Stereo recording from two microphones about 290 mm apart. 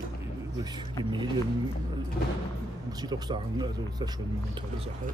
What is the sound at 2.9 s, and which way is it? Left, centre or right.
Speech, centre.